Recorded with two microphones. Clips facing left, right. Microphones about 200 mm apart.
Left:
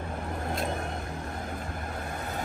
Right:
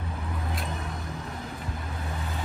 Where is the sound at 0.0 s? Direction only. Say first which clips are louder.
Left 2 dB; 50° left (ahead or behind).